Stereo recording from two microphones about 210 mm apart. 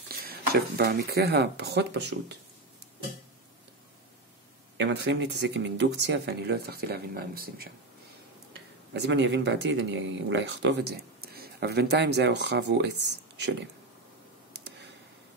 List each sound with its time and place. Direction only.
0.1 s speech: 45° right (ahead or behind)
4.7 s speech: 55° right (ahead or behind)
9.0 s speech: 55° right (ahead or behind)